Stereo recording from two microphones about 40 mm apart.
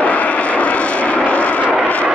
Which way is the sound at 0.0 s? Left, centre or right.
Left.